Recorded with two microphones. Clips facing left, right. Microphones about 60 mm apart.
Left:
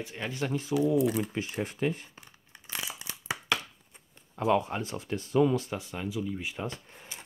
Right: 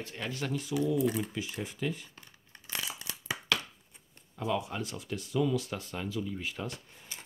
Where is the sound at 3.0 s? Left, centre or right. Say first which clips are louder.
Left 2 dB; left.